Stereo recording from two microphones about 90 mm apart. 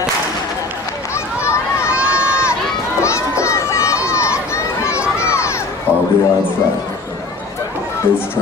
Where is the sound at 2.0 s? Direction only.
30° left (ahead or behind).